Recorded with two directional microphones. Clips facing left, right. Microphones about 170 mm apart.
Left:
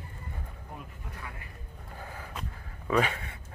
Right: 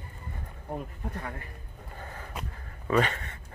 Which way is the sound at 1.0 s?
50° right (ahead or behind).